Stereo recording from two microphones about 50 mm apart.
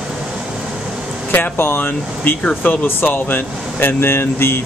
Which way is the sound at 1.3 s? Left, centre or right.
Left.